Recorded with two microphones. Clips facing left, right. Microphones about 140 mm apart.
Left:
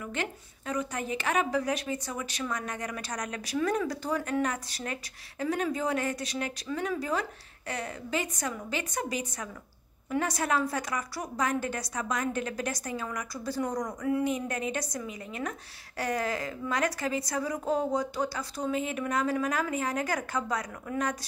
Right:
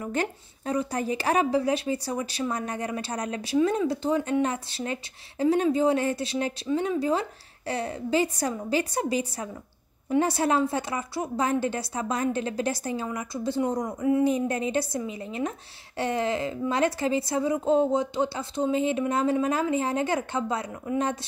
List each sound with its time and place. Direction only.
0.0 s a woman's voice: 40° right (ahead or behind)